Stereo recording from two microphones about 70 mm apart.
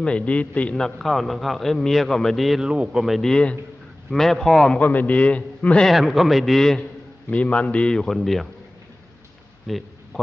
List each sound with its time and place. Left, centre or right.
0.0 s a man's voice: centre
0.7 s a man's voice: centre
2.7 s speech: centre
3.2 s a man's voice: centre
4.7 s a man's voice: left
5.9 s a man's voice: centre
7.2 s a man's voice: centre
9.7 s a sound: centre